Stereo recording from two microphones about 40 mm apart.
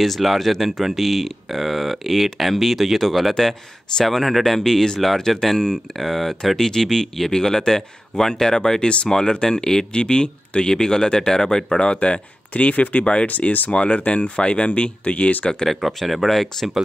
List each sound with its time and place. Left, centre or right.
0.0 s speech: centre; by 13.0 s left
13.0 s speech: left
13.3 s speech: left
13.7 s speech: left
15.6 s speech: centre